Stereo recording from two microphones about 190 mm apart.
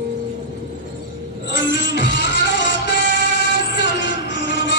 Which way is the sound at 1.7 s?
70° left (ahead or behind).